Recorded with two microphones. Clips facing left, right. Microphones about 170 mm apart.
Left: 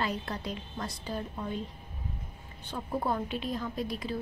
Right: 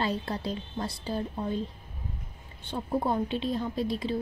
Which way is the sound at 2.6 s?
25° right (ahead or behind).